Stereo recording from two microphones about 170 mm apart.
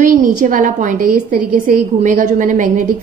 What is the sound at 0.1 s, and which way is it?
A woman's voice, 50° right (ahead or behind).